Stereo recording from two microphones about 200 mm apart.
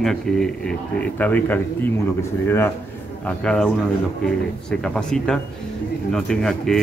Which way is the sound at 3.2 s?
5° left (ahead or behind).